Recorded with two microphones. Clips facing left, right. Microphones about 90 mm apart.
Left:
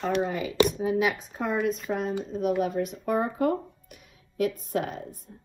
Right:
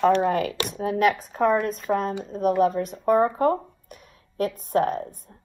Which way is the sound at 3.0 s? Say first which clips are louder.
Right 7 dB; 45° right (ahead or behind).